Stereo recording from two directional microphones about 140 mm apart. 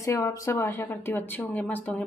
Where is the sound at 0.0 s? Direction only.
20° left (ahead or behind).